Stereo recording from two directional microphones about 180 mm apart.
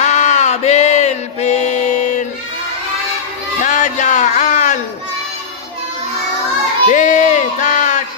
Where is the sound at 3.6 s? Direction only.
40° left (ahead or behind).